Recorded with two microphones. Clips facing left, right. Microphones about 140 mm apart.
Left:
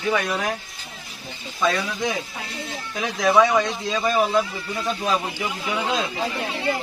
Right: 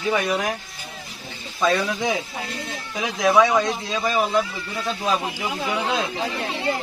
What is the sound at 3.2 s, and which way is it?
Speech, centre (ahead or behind).